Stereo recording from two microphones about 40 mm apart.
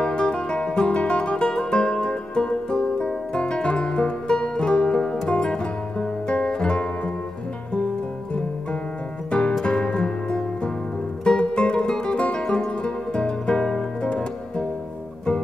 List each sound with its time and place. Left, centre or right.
0.0 s music: left
9.3 s music: left